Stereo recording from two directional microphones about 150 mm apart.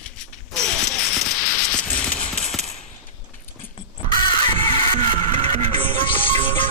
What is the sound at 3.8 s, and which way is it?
Crow, 30° left (ahead or behind).